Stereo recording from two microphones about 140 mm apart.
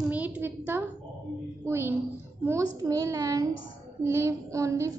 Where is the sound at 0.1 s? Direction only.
10° right (ahead or behind).